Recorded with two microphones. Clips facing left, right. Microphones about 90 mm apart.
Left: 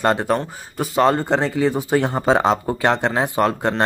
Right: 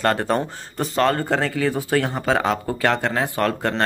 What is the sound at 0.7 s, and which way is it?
Speech, 5° left (ahead or behind).